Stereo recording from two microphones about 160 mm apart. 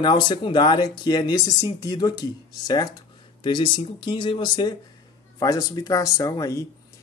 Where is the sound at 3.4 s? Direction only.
30° left (ahead or behind).